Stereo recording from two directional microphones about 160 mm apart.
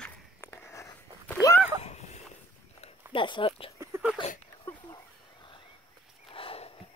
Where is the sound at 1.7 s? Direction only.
40° left (ahead or behind).